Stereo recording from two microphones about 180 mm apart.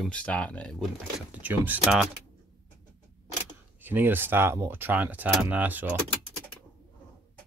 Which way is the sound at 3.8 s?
10° right (ahead or behind).